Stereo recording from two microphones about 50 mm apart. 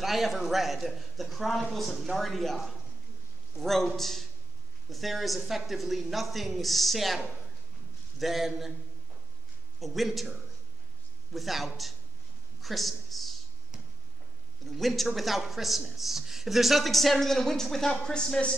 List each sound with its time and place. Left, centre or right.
0.0 s a man's voice: centre
9.8 s a man's voice: centre
14.7 s a man's voice: centre